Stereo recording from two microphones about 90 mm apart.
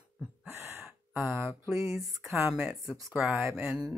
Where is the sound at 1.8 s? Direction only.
35° right (ahead or behind).